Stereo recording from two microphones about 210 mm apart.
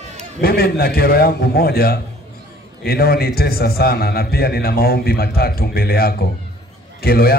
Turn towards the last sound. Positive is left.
turn(degrees=45)  # may be behind; listen again after turning